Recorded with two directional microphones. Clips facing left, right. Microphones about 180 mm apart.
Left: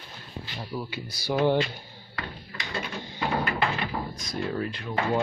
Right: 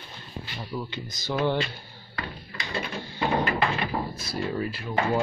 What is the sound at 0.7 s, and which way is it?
Speech, 10° left (ahead or behind).